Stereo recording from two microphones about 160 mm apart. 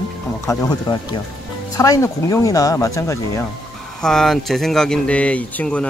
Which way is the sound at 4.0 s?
Centre (ahead or behind).